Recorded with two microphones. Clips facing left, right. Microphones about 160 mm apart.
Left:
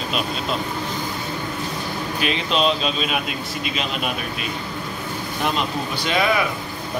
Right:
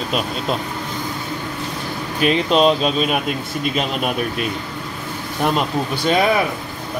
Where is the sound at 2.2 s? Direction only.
45° right (ahead or behind).